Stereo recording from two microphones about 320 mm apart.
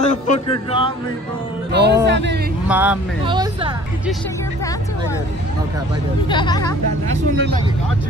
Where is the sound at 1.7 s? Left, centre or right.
Right.